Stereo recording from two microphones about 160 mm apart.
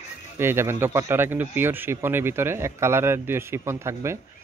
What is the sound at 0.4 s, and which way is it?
A man's voice, 15° right (ahead or behind).